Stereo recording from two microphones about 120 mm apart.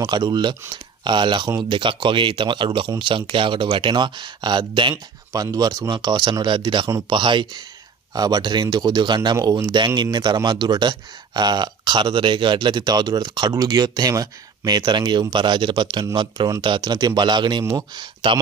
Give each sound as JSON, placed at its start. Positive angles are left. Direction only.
{"t": 0.0, "sound": "speech", "side_deg": -35}